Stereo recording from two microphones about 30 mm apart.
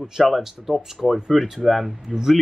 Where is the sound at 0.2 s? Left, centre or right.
Centre.